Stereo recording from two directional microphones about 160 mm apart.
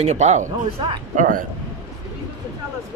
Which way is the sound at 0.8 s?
30° right (ahead or behind).